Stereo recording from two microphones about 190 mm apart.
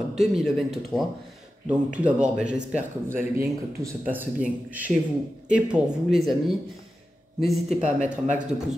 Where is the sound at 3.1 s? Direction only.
50° right (ahead or behind).